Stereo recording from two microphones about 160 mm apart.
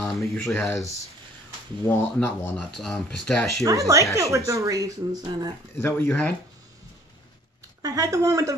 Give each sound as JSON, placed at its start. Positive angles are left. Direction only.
{"t": 0.0, "sound": "speech", "side_deg": 0}
{"t": 2.1, "sound": "speech", "side_deg": 15}
{"t": 2.5, "sound": "speech", "side_deg": 0}
{"t": 3.6, "sound": "speech", "side_deg": -20}
{"t": 5.8, "sound": "speech", "side_deg": 15}
{"t": 7.8, "sound": "speech", "side_deg": -20}